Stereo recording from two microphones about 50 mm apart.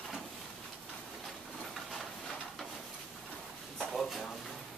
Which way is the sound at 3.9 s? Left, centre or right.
Centre.